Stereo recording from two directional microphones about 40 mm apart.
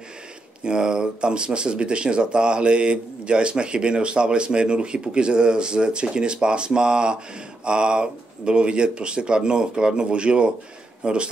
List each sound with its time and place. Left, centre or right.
0.7 s speech: right